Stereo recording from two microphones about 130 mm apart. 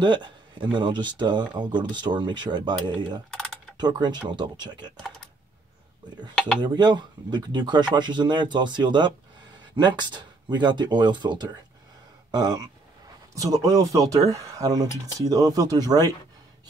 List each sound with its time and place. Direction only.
0.0 s a man's voice: 35° right (ahead or behind)
3.3 s typing: centre (ahead or behind)
3.7 s speech: 35° right (ahead or behind)
6.0 s speech: 35° right (ahead or behind)